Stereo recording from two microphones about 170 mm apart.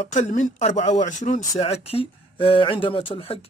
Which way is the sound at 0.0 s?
45° left (ahead or behind).